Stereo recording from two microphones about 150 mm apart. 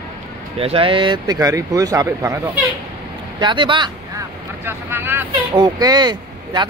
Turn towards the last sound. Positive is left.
turn(degrees=-25)  # may be behind; listen again after turning